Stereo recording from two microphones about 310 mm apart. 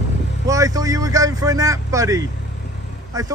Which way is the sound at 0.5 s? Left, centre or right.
Centre.